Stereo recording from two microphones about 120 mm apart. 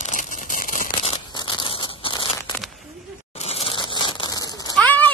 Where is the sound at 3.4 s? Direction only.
55° left (ahead or behind); by 4.7 s 35° left (ahead or behind).